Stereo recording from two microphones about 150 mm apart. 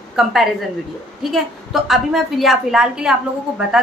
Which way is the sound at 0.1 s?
Centre (ahead or behind).